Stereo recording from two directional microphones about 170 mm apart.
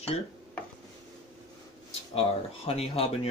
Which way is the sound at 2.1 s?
35° left (ahead or behind).